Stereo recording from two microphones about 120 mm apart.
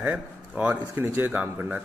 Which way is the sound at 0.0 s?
15° right (ahead or behind).